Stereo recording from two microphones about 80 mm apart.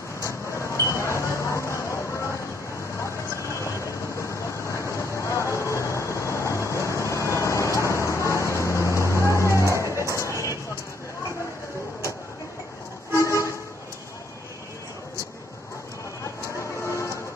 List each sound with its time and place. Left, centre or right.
0.2 s wind chime: left
3.0 s train: left
9.1 s music: left
9.5 s music: right
10.1 s a sound: left
13.1 s vehicle: left